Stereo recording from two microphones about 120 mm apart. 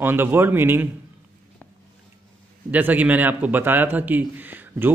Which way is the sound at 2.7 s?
15° right (ahead or behind).